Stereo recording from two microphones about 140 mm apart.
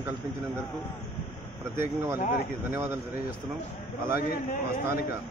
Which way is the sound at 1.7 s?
15° right (ahead or behind).